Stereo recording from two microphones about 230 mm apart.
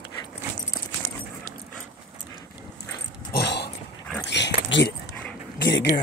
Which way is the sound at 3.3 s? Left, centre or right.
Left.